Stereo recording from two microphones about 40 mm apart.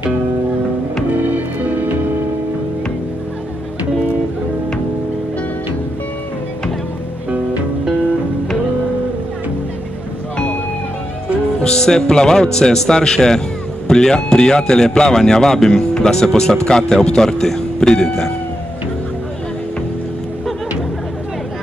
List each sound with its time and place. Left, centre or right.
1.3 s music: right
11.6 s speech: centre